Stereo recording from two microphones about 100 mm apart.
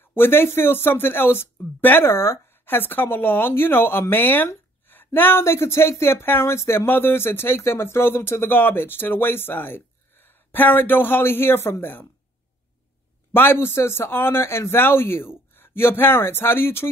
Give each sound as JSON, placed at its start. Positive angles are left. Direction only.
{"t": 0.0, "sound": "speech", "side_deg": 20}
{"t": 13.3, "sound": "speech", "side_deg": 25}